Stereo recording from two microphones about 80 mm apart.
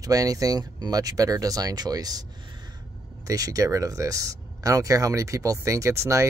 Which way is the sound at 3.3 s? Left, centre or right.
Right.